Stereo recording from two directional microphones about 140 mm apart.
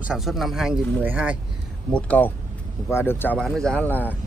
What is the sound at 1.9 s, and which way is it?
Speech, 10° left (ahead or behind).